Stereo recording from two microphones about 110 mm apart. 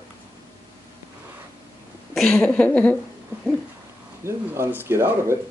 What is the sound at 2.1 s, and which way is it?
Speech, 5° left (ahead or behind).